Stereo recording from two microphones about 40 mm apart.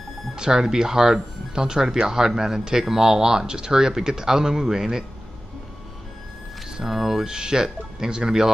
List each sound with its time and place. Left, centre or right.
0.4 s speech: centre
6.8 s speech: centre